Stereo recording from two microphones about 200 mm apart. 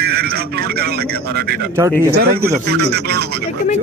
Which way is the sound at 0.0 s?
50° right (ahead or behind).